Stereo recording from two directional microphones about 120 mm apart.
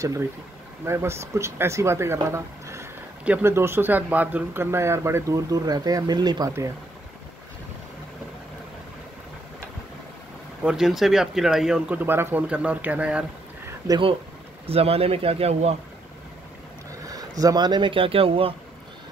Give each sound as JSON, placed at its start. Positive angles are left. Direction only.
{"t": 0.8, "sound": "speech", "side_deg": -20}
{"t": 10.6, "sound": "speech", "side_deg": -5}
{"t": 14.7, "sound": "speech", "side_deg": -55}
{"t": 17.1, "sound": "speech", "side_deg": -30}